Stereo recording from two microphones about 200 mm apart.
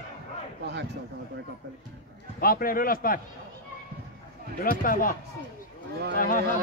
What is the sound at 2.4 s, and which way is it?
Speech, 45° left (ahead or behind).